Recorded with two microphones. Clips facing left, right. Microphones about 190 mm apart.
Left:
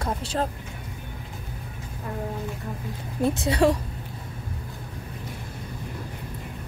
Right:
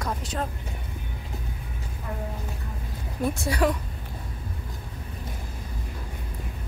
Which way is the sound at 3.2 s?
25° left (ahead or behind).